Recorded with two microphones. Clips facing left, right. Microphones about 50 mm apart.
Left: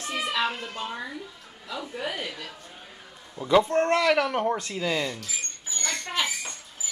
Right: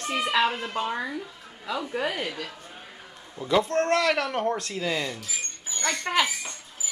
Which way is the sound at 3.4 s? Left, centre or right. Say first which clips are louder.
Left 2 dB; centre.